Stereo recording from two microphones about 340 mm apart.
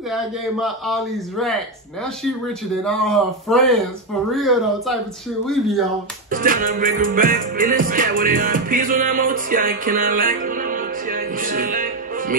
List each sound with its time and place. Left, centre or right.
0.1 s a man's voice: centre
6.3 s music: right